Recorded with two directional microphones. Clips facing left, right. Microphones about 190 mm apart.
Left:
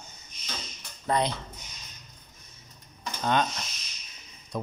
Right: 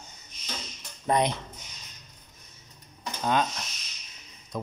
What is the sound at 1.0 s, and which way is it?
Speech, 20° right (ahead or behind).